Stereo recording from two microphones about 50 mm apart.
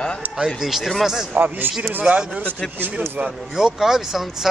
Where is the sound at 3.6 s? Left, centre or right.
Centre.